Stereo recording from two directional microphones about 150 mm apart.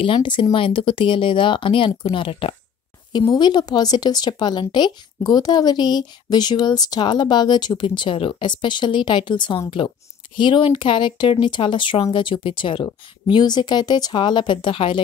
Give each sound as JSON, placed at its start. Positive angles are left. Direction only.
{"t": 0.0, "sound": "a woman's voice", "side_deg": 35}